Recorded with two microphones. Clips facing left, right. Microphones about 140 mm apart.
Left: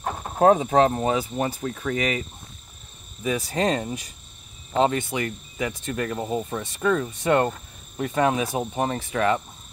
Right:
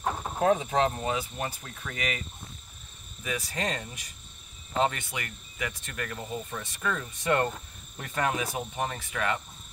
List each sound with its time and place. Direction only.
0.0 s a sound: 5° left (ahead or behind)
0.4 s speech: 45° left (ahead or behind)
3.3 s speech: 30° left (ahead or behind)